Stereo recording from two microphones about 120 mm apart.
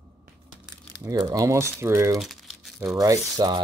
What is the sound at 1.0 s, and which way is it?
Speech, 30° right (ahead or behind).